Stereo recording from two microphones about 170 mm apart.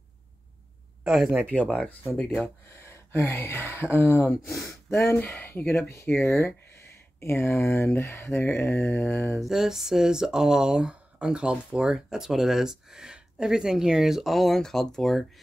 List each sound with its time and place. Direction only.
1.0 s speech: 5° right (ahead or behind)
1.5 s speech: 5° left (ahead or behind)
9.4 s speech: centre (ahead or behind)